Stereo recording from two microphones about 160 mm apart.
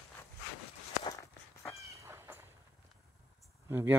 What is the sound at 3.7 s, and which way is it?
Speech, 15° right (ahead or behind).